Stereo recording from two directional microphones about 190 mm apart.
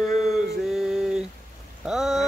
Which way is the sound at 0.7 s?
5° right (ahead or behind).